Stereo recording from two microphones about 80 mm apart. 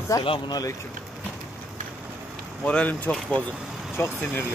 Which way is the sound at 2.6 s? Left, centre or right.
Centre.